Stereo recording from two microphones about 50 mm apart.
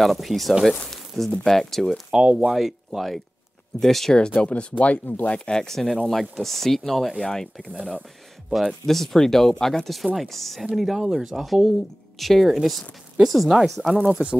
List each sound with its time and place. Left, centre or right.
0.0 s speech: centre
0.8 s a sound: centre
1.3 s speech: centre
4.4 s speech: left
5.3 s speech: centre
14.0 s speech: right